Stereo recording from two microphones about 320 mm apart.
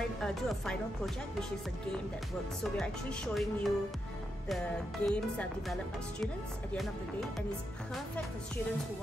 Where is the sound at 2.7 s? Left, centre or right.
Centre.